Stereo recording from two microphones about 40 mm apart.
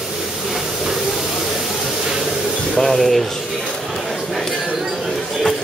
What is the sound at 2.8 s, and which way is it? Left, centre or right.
Speech, centre.